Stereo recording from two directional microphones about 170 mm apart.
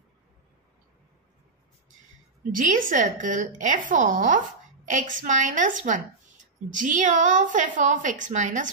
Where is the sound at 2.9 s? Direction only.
45° right (ahead or behind).